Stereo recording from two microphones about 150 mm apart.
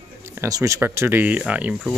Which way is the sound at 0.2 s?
15° right (ahead or behind).